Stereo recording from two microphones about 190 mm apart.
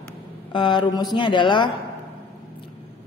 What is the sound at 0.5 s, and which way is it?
A woman's voice, 25° left (ahead or behind).